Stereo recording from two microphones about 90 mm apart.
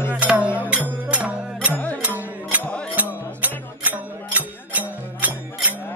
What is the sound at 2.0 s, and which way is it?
Music, 20° right (ahead or behind).